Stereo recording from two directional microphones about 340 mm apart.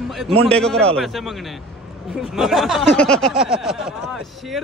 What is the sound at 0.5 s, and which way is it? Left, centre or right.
Speech, centre.